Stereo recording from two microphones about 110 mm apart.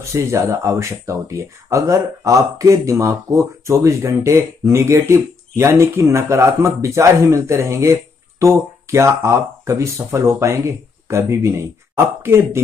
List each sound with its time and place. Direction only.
0.0 s speech: 25° right (ahead or behind)